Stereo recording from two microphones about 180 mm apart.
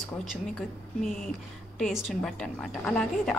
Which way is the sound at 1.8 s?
Centre (ahead or behind).